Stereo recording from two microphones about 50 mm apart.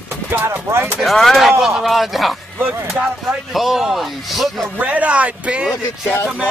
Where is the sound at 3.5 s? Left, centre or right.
Centre.